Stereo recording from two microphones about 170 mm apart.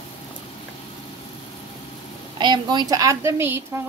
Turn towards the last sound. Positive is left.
turn(degrees=-15)  # may be behind; listen again after turning